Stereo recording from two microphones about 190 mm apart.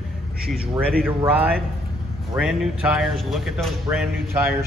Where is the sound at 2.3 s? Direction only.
5° right (ahead or behind).